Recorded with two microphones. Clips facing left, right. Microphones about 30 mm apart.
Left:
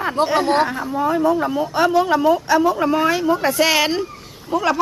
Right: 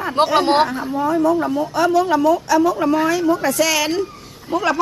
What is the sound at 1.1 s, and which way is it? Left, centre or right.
Speech, left.